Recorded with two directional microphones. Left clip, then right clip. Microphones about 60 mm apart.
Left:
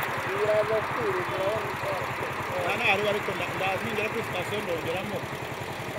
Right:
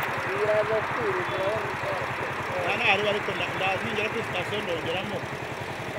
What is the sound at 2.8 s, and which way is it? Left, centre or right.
Speech, left.